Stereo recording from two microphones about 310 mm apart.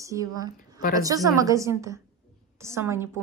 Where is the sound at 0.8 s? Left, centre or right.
Left.